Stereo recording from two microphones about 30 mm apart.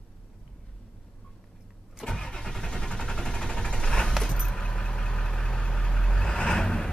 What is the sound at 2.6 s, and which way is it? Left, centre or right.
Vehicle, left.